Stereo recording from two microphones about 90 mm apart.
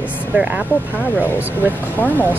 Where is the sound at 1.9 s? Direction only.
20° left (ahead or behind).